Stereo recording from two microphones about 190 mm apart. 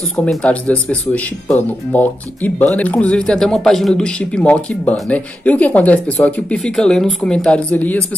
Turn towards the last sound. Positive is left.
turn(degrees=10)  # may be behind; listen again after turning